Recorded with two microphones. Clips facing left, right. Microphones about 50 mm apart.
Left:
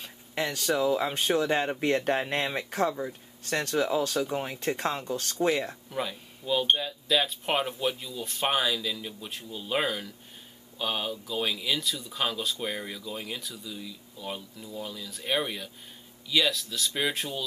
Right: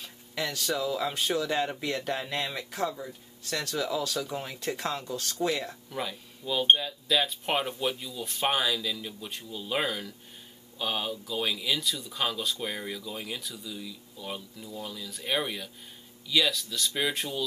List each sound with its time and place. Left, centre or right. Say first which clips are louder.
0.0 s speech: left 2 dB; left
5.9 s speech: left 2 dB; centre